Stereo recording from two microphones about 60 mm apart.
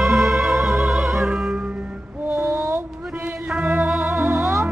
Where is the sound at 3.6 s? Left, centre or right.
Right.